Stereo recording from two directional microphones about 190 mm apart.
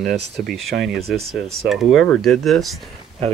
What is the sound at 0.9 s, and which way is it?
Speech, 55° right (ahead or behind).